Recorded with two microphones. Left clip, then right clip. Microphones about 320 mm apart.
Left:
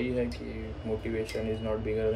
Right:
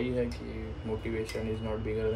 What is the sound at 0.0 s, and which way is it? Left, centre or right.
Speech, centre.